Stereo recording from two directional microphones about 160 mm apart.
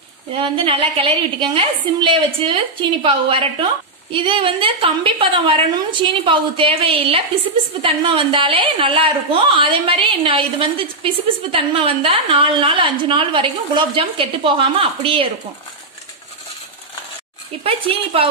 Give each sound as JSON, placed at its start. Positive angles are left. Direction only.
{"t": 0.4, "sound": "a woman's voice", "side_deg": -35}
{"t": 17.6, "sound": "a woman's voice", "side_deg": -35}